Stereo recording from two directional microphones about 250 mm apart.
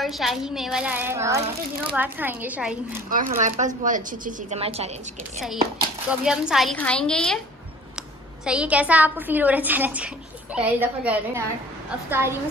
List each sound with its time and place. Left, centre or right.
0.0 s a child's voice: centre
3.1 s speech: right
6.0 s a woman's voice: centre
8.5 s a woman's voice: centre